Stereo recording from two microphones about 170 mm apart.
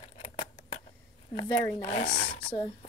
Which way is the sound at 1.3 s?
35° left (ahead or behind).